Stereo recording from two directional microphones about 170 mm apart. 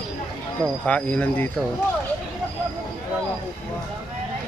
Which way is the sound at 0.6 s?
5° left (ahead or behind).